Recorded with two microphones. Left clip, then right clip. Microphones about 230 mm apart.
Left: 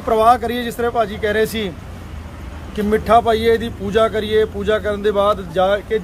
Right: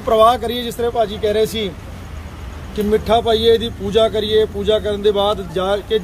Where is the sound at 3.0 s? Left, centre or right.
Centre.